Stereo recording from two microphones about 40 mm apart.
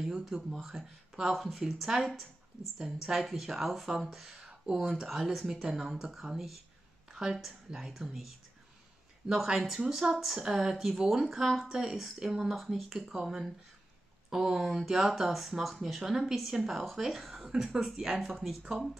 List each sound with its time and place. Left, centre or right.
0.2 s a woman's voice: centre
9.3 s a woman's voice: centre
11.7 s speech: centre
12.4 s a woman's voice: centre
13.2 s a woman's voice: centre
18.1 s a woman's voice: centre